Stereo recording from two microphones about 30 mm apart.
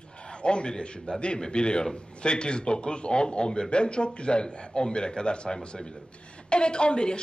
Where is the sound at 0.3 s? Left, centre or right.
Left.